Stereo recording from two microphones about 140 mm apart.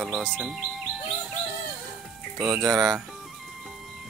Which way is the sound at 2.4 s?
25° right (ahead or behind).